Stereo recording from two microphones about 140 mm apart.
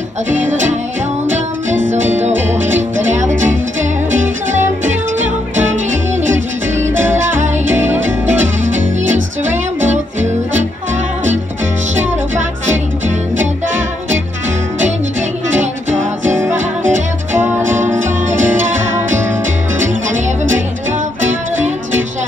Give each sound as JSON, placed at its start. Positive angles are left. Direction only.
{"t": 3.1, "sound": "music", "side_deg": -60}
{"t": 7.3, "sound": "music", "side_deg": -60}
{"t": 12.0, "sound": "music", "side_deg": -60}
{"t": 17.4, "sound": "music", "side_deg": -15}
{"t": 18.0, "sound": "music", "side_deg": -60}
{"t": 19.9, "sound": "music", "side_deg": -60}